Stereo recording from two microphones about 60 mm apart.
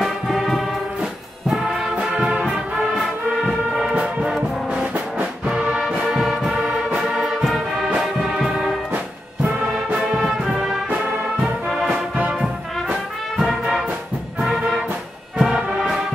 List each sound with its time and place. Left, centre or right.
0.0 s music: centre
4.0 s brass instrument: centre
5.4 s music: centre
8.9 s music: right
10.1 s music: centre
11.9 s music: right
12.8 s brass instrument: centre
15.3 s music: centre